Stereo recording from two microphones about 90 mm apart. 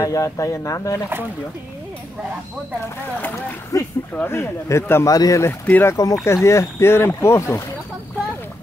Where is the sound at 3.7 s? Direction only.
40° left (ahead or behind).